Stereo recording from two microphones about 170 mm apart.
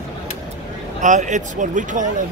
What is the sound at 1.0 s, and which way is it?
Speech, 45° right (ahead or behind).